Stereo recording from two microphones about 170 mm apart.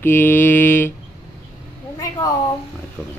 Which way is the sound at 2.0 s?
20° left (ahead or behind).